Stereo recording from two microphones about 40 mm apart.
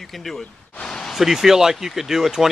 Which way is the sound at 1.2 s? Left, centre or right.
Centre.